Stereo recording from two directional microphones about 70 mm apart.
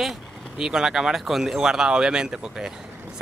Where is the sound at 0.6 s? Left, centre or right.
Centre.